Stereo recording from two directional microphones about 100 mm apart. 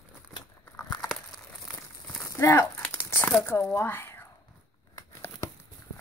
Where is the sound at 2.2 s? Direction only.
30° left (ahead or behind).